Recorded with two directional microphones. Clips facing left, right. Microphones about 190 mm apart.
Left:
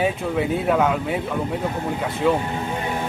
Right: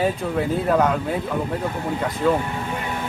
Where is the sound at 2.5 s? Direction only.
25° left (ahead or behind).